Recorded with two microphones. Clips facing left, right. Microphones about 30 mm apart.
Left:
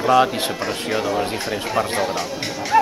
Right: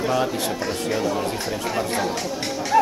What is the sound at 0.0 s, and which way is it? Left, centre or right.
Speech, left.